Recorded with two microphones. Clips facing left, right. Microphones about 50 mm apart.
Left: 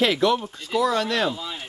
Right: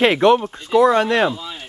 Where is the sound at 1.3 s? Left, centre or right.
Centre.